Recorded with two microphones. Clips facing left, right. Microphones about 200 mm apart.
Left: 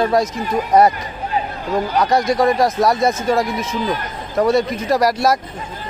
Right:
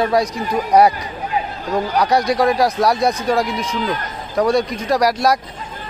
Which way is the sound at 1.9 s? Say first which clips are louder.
Even; centre (ahead or behind).